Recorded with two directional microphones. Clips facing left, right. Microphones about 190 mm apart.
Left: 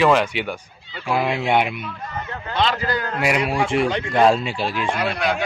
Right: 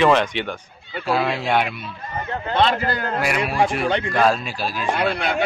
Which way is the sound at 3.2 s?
25° left (ahead or behind).